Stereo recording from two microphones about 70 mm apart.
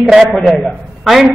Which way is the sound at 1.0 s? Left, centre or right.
Centre.